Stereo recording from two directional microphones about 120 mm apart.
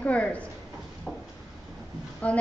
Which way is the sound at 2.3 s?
10° left (ahead or behind).